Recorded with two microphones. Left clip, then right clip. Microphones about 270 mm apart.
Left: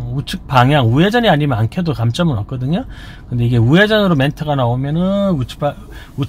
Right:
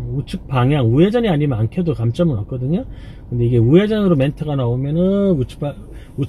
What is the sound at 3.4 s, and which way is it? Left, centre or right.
Speech, left.